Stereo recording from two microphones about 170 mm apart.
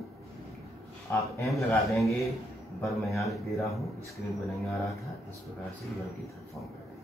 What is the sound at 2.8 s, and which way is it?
Speech, centre (ahead or behind).